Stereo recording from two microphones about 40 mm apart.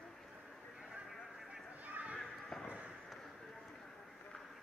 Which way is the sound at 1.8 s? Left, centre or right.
Right.